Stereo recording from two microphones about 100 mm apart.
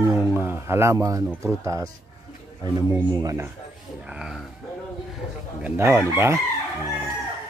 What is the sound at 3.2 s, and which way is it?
Speech, 25° right (ahead or behind).